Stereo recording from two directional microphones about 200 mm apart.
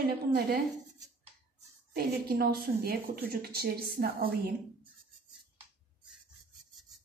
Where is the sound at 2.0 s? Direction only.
50° right (ahead or behind).